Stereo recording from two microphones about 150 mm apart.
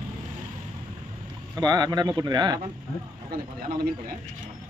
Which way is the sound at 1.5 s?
25° right (ahead or behind).